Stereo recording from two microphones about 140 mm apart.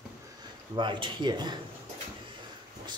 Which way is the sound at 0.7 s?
35° right (ahead or behind).